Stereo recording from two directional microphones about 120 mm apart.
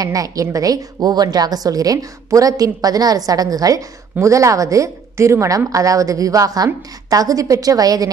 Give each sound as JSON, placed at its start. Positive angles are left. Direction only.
{"t": 0.0, "sound": "a woman's voice", "side_deg": -30}